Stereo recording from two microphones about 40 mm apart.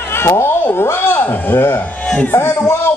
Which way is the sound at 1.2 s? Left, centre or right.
Left.